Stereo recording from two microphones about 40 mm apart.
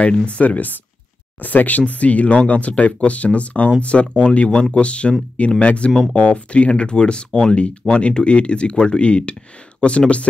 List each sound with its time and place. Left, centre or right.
0.0 s speech: left